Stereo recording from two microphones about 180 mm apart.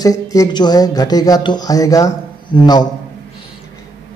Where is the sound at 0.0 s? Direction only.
20° left (ahead or behind).